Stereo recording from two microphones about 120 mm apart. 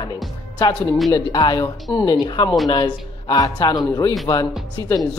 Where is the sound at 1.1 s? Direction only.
35° left (ahead or behind).